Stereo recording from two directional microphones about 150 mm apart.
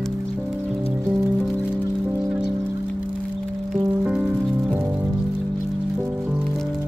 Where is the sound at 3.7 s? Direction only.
10° right (ahead or behind).